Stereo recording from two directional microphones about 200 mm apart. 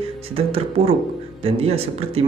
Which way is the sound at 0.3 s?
30° right (ahead or behind).